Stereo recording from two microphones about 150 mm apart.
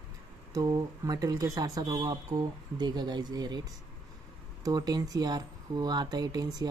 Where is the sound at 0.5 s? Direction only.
25° right (ahead or behind).